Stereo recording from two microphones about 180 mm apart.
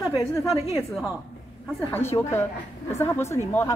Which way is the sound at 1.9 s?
15° left (ahead or behind).